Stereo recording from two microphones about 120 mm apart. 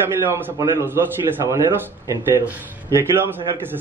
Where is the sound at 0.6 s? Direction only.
20° right (ahead or behind).